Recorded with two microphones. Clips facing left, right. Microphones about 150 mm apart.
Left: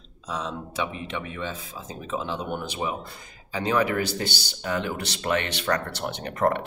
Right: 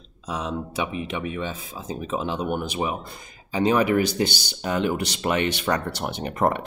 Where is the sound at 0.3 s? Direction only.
15° right (ahead or behind).